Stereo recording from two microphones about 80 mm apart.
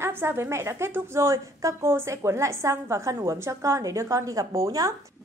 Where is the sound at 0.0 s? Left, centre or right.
Right.